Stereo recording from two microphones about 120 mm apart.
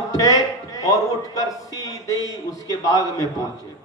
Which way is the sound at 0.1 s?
30° left (ahead or behind).